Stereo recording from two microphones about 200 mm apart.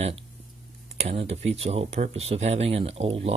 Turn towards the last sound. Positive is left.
turn(degrees=-30)  # may be behind; listen again after turning